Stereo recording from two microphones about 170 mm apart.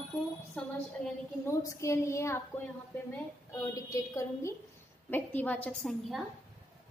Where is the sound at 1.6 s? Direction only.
20° left (ahead or behind).